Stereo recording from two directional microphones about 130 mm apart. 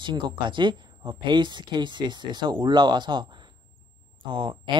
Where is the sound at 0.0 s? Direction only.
35° right (ahead or behind).